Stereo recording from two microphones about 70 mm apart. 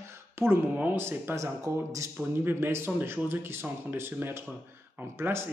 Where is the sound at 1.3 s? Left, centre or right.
Right.